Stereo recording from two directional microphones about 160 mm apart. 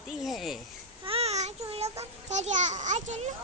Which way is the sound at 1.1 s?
40° right (ahead or behind).